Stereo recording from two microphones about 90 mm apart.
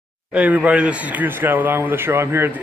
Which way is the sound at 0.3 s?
15° right (ahead or behind).